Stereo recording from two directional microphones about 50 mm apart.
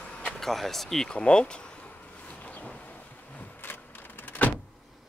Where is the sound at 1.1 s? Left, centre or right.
Left.